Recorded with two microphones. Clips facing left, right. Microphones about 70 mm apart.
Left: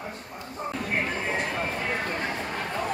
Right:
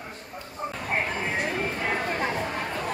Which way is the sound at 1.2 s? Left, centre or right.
Centre.